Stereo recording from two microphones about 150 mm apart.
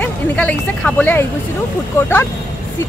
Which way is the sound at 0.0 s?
10° left (ahead or behind).